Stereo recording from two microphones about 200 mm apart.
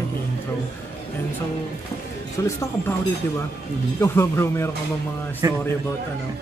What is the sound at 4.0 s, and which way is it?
Speech, 15° left (ahead or behind).